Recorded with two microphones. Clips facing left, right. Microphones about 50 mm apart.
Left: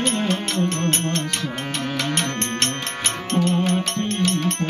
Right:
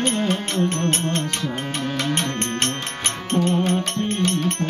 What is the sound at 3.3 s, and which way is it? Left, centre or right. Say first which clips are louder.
Music: right 1 dB; right.